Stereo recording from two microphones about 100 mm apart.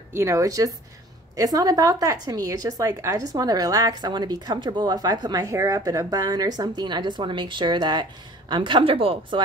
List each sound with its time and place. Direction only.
0.1 s speech: 30° right (ahead or behind); by 9.4 s 65° right (ahead or behind)